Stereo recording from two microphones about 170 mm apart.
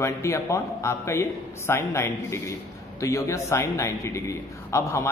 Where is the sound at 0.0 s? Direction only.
15° left (ahead or behind).